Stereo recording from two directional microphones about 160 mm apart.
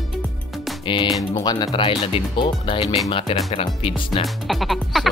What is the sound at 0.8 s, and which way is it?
Music, 30° left (ahead or behind).